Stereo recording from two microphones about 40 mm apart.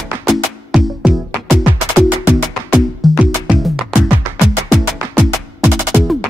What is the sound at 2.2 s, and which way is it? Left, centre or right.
Music, right.